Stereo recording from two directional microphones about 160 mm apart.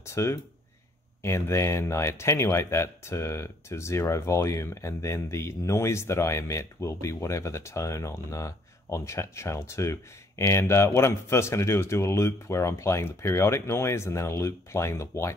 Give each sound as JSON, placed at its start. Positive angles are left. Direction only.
{"t": 0.0, "sound": "speech", "side_deg": 15}